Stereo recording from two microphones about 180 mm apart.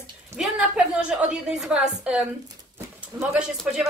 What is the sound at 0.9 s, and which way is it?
A woman's voice, 5° right (ahead or behind).